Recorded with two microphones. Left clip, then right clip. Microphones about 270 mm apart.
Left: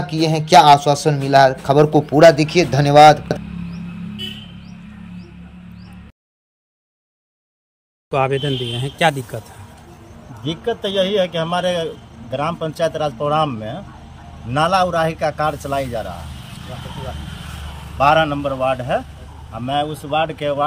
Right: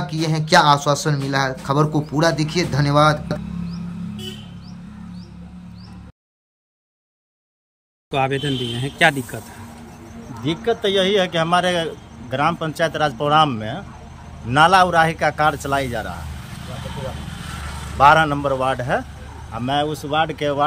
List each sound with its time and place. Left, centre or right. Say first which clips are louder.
0.0 s a man's voice: left 5 dB; centre
8.1 s speech: left 2 dB; centre
10.4 s a man's voice: right 2 dB; centre
17.9 s a man's voice: right 1 dB; centre